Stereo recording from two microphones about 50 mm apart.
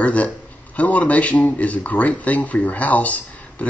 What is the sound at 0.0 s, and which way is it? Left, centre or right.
A man's voice, left.